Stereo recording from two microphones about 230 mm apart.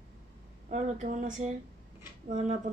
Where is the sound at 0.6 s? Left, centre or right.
Right.